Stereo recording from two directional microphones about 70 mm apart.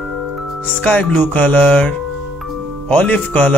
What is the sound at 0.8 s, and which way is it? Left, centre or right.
Speech, left.